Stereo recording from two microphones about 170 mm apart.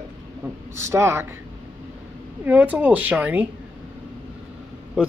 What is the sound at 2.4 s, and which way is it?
Speech, 10° right (ahead or behind).